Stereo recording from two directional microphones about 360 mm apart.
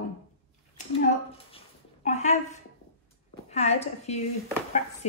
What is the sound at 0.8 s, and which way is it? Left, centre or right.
Speech, left.